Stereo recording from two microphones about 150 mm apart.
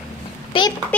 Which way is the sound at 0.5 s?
35° left (ahead or behind).